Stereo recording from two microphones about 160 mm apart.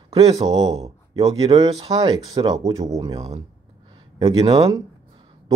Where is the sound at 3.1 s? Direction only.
40° right (ahead or behind).